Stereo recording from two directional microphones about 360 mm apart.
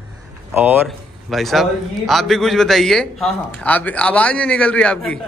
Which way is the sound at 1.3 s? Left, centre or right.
Centre.